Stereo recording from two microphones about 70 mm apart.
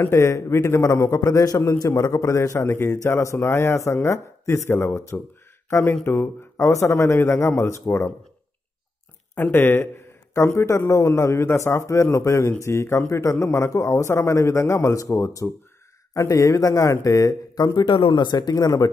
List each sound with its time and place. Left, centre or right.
0.0 s speech: left
1.6 s speech: left
7.8 s speech: left
9.3 s speech: left
18.1 s speech: left
18.6 s speech: left